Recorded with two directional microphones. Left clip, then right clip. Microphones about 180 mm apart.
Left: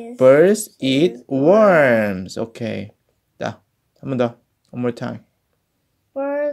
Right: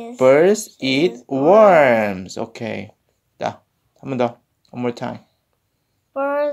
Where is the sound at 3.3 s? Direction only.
60° left (ahead or behind).